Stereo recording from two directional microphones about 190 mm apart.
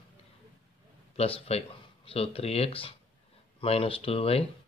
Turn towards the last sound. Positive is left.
turn(degrees=30)  # may be behind; listen again after turning